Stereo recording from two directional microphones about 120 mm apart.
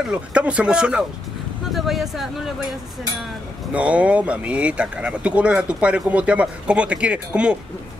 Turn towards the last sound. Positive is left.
turn(degrees=-10)  # may be behind; listen again after turning